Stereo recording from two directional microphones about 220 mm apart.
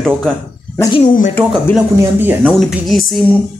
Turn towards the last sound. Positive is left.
turn(degrees=0)  # may be behind; listen again after turning